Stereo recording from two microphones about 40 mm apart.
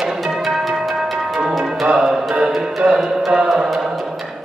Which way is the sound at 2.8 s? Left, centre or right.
Right.